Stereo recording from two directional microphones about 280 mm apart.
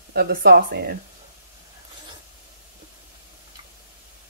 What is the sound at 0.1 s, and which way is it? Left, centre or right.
Speech, right.